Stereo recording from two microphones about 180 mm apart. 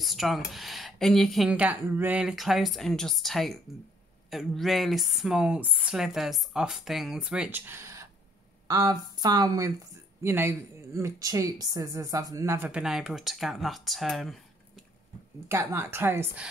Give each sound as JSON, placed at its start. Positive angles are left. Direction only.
{"t": 0.0, "sound": "speech", "side_deg": 0}
{"t": 15.4, "sound": "speech", "side_deg": -10}